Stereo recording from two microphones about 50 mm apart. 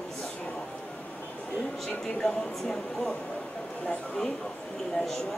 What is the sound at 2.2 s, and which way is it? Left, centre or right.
Speech, centre.